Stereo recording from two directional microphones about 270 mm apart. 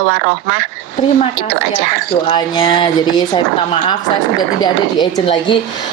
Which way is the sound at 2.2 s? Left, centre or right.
Centre.